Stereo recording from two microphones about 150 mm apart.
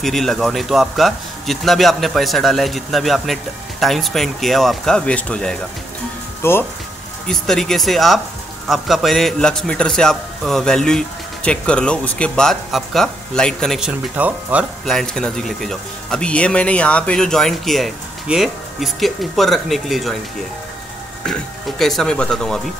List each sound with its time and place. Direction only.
0.0 s speech: centre (ahead or behind)
6.4 s speech: 15° left (ahead or behind)
7.2 s speech: 5° left (ahead or behind)
13.7 s speech: 5° right (ahead or behind)
14.9 s speech: 5° left (ahead or behind)
21.3 s speech: centre (ahead or behind)